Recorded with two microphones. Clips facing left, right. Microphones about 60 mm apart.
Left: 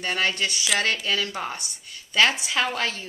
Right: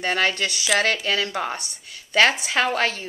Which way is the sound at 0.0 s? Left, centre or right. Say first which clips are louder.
Right 3 dB; right.